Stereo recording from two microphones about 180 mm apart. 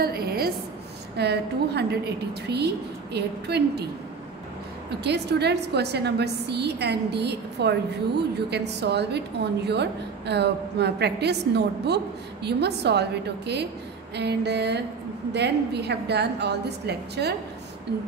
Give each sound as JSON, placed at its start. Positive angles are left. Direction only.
{"t": 0.0, "sound": "a sound", "side_deg": -60}
{"t": 1.1, "sound": "a woman's voice", "side_deg": -65}
{"t": 5.0, "sound": "a woman's voice", "side_deg": -65}